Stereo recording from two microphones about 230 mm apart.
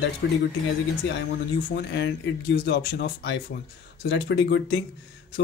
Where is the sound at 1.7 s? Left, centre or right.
Left.